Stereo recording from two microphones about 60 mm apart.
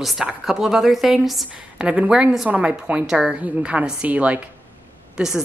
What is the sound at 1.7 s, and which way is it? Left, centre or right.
A woman's voice, centre.